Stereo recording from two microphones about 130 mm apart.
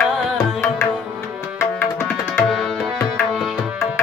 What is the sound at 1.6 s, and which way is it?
Tabla, 20° left (ahead or behind).